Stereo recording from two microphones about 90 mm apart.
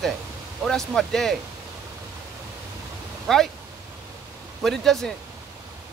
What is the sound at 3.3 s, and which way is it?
Speech, 5° left (ahead or behind).